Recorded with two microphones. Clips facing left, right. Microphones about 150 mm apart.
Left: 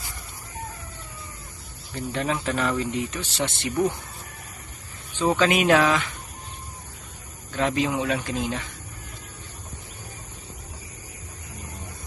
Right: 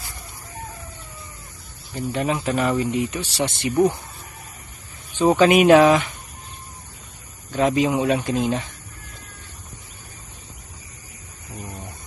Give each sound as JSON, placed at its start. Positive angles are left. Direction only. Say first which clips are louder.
{"t": 2.0, "sound": "speech", "louder": "right 3 dB", "side_deg": -10}
{"t": 5.4, "sound": "speech", "louder": "right 7 dB", "side_deg": -15}
{"t": 7.5, "sound": "speech", "louder": "right 5 dB", "side_deg": -15}